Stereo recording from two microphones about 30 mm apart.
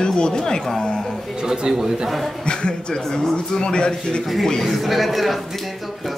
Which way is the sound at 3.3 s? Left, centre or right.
Left.